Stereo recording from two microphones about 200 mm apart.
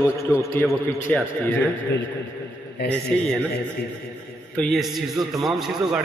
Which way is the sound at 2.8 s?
55° left (ahead or behind).